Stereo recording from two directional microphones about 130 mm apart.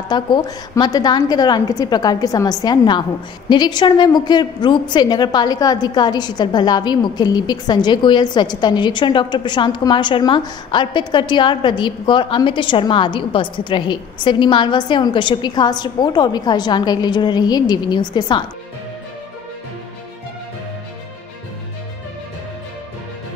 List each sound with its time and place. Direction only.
0.1 s a woman's voice: 35° left (ahead or behind)